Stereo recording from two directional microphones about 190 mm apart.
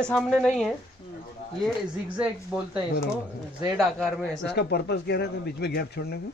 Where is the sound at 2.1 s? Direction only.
10° right (ahead or behind).